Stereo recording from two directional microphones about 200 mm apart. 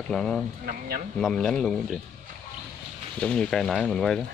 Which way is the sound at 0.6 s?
45° right (ahead or behind).